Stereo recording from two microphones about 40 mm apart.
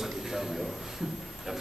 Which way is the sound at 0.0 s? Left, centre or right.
Centre.